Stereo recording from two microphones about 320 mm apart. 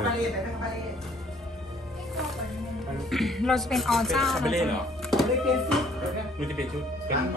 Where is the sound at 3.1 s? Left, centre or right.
Centre.